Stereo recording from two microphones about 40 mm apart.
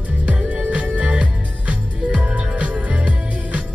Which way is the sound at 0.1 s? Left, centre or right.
Right.